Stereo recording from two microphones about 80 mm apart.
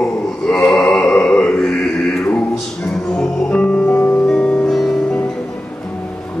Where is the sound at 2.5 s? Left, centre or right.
Centre.